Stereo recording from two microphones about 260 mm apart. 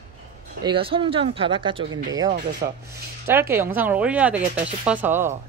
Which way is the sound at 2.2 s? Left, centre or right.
Right.